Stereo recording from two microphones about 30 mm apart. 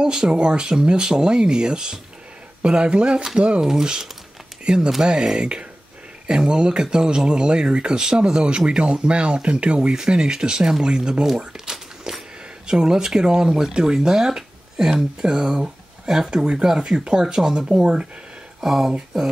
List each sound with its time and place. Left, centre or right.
0.0 s speech: right
3.6 s speech: right
5.4 s speech: right
9.9 s speech: right
11.2 s a sound: centre
12.6 s speech: right
16.6 s speech: centre
16.9 s speech: right
18.6 s speech: centre